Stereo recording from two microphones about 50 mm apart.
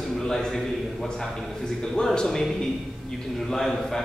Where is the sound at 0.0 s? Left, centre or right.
Centre.